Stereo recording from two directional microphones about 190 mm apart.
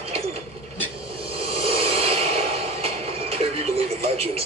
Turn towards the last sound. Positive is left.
turn(degrees=-30)  # may be behind; listen again after turning